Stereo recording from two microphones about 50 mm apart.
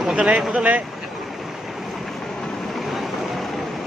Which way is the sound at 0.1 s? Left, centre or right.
Right.